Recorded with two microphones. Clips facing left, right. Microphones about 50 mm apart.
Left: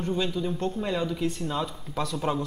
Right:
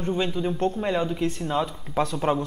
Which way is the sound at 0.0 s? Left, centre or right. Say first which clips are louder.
Right 2 dB; right.